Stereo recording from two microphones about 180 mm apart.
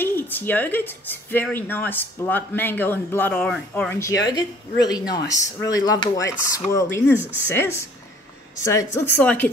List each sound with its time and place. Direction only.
0.0 s speech: 10° left (ahead or behind)